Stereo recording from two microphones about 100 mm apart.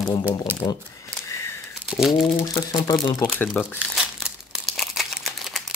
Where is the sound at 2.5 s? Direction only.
35° left (ahead or behind).